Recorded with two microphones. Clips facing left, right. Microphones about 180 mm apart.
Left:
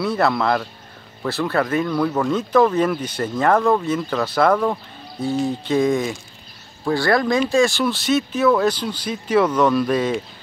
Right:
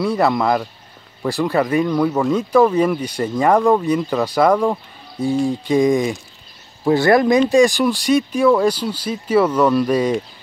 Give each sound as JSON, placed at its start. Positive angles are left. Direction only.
{"t": 0.0, "sound": "speech", "side_deg": -10}